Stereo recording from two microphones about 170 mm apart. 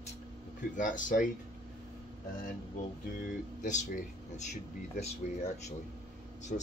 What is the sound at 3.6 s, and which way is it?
Speech, 45° left (ahead or behind).